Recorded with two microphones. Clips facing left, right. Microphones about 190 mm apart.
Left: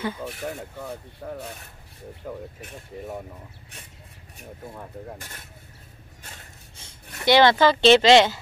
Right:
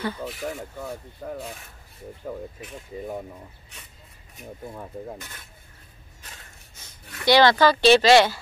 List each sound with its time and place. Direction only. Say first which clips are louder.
6.8 s speech: even; 25° left (ahead or behind)